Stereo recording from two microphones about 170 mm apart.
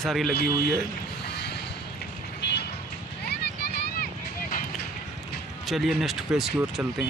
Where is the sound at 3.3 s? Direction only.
70° left (ahead or behind).